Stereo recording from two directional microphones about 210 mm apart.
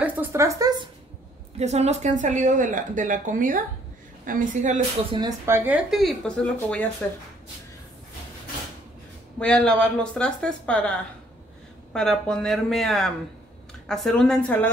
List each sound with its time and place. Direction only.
0.0 s speech: 10° right (ahead or behind)
1.6 s speech: 30° right (ahead or behind)
5.1 s speech: 15° right (ahead or behind); by 6.9 s 5° left (ahead or behind)
9.4 s speech: 5° left (ahead or behind)
11.9 s speech: 5° left (ahead or behind)